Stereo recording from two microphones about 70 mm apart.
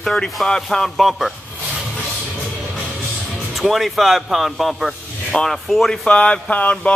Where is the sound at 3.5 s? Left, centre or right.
Centre.